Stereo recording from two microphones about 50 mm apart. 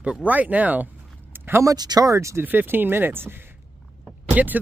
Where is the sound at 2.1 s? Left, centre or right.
Right.